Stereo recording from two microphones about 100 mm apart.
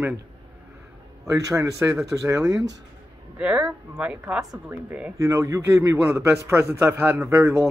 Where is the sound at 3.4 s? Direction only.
10° right (ahead or behind).